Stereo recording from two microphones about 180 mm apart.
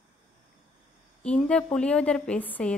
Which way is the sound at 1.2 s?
5° left (ahead or behind).